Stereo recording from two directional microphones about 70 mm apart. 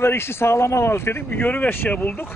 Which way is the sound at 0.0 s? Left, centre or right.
Left.